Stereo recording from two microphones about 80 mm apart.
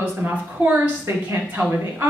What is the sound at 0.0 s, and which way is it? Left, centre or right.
A woman's voice, right.